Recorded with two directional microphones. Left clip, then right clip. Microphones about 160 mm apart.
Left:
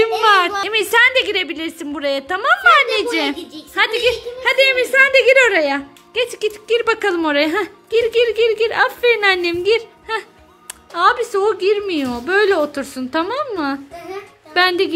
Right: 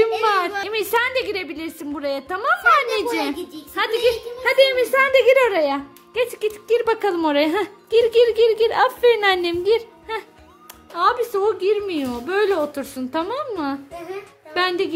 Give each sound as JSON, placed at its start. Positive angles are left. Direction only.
{"t": 0.0, "sound": "a woman's voice", "side_deg": 0}